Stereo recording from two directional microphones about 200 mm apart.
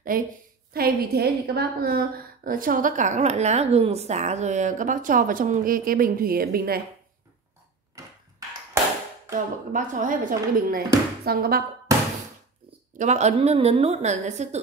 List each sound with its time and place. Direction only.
0.1 s a woman's voice: 45° right (ahead or behind)
8.0 s a sound: 15° right (ahead or behind)
9.3 s a woman's voice: 40° right (ahead or behind)
12.9 s a woman's voice: 35° right (ahead or behind)